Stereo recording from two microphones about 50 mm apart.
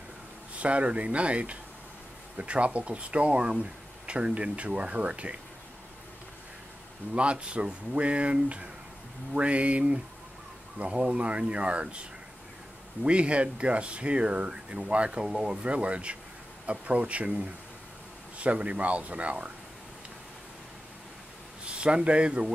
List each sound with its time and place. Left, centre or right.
0.6 s speech: right
7.2 s speech: right
18.4 s speech: right
21.6 s speech: right